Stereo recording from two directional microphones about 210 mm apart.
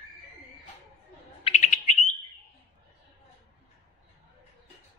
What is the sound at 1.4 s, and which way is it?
Bird, 35° left (ahead or behind).